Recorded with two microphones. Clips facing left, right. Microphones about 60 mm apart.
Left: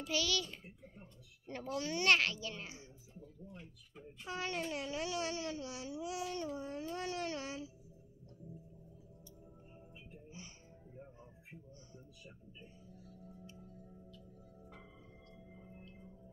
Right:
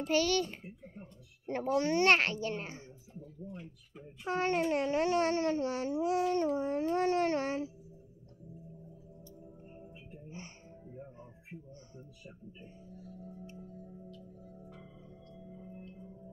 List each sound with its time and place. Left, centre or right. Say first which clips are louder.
0.0 s a child's voice: right 7 dB; right
3.9 s a child's voice: right 3 dB; centre
4.3 s speech: right 9 dB; right